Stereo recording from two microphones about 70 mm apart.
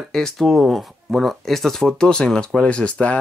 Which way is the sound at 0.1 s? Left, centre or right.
Centre.